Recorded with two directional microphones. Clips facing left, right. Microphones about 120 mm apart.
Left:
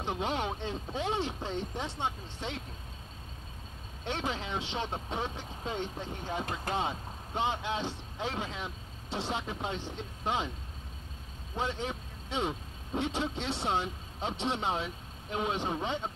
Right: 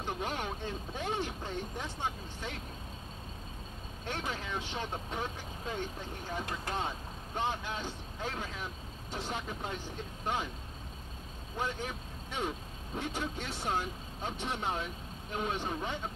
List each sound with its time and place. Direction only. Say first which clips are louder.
0.0 s speech: left 4 dB; 25° left (ahead or behind)
4.0 s speech: left 3 dB; 25° left (ahead or behind)
11.5 s speech: left 3 dB; 25° left (ahead or behind)